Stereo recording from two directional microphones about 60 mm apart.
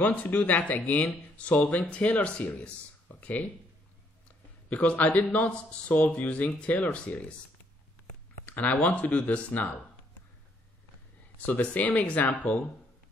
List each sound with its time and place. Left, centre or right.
0.0 s speech: left
4.6 s speech: left
8.5 s speech: left
11.4 s speech: left